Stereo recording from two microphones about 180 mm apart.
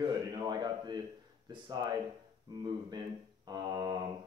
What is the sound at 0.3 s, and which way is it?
A man's voice, 25° right (ahead or behind).